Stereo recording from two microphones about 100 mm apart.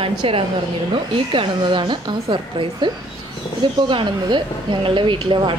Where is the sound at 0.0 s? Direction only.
65° right (ahead or behind).